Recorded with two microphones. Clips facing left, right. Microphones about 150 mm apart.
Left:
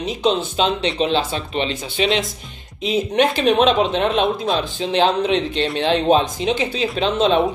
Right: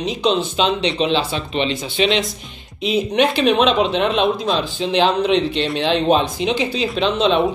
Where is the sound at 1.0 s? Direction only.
45° left (ahead or behind).